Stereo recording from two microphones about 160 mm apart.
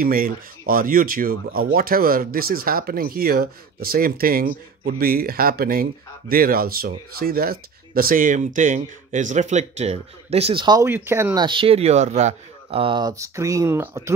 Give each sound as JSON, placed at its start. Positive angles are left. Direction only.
{"t": 0.0, "sound": "speech", "side_deg": -60}
{"t": 10.8, "sound": "speech", "side_deg": -15}
{"t": 11.3, "sound": "speech", "side_deg": -30}